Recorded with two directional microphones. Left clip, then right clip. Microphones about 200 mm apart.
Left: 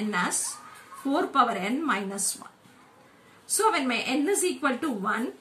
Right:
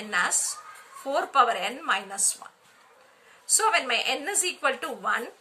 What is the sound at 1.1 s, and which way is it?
A woman's voice, 35° right (ahead or behind).